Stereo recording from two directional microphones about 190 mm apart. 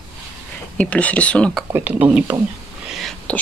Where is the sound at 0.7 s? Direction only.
5° left (ahead or behind).